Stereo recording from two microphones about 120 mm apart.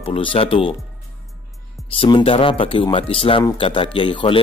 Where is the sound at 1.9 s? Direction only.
45° left (ahead or behind).